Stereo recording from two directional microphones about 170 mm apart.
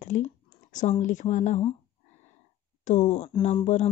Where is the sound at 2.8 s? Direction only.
40° left (ahead or behind).